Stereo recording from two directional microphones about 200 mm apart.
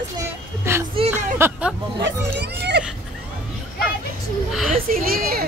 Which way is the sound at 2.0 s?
60° right (ahead or behind).